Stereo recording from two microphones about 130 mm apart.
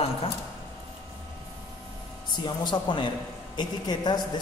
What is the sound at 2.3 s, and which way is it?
Speech, 35° left (ahead or behind).